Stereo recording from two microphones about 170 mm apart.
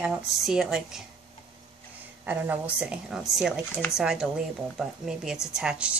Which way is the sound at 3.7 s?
15° left (ahead or behind).